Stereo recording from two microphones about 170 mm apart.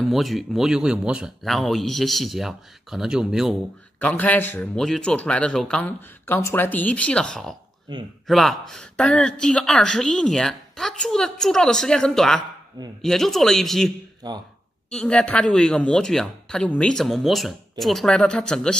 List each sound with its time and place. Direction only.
0.0 s a woman's voice: centre (ahead or behind)
4.0 s speech: 10° left (ahead or behind)
7.9 s speech: 25° right (ahead or behind)
8.3 s a woman's voice: centre (ahead or behind)
14.2 s speech: 25° right (ahead or behind)
14.9 s a woman's voice: 5° left (ahead or behind)